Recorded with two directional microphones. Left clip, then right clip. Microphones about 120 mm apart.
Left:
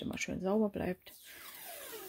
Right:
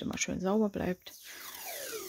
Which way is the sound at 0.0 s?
25° right (ahead or behind).